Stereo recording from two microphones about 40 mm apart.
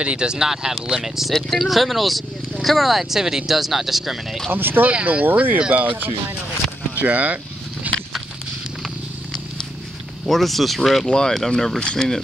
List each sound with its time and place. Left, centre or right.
0.0 s speech: right
0.5 s speech: centre
1.3 s speech: centre
4.5 s speech: right
5.0 s speech: right
5.6 s speech: right
7.0 s speech: right
7.9 s a sound: right
10.2 s speech: centre
11.1 s speech: centre